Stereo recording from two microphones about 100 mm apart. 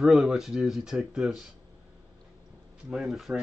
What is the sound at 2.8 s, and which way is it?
Speech, 5° right (ahead or behind).